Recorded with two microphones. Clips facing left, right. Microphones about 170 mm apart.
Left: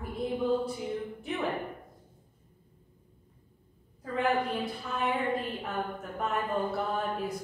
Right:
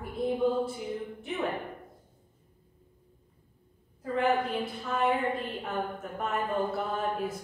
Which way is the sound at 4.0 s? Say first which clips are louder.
Right 2 dB; centre (ahead or behind).